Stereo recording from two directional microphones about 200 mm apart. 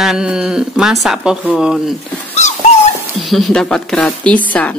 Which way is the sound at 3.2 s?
Centre (ahead or behind).